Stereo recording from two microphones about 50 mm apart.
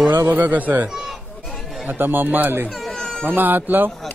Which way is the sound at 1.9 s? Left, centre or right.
Right.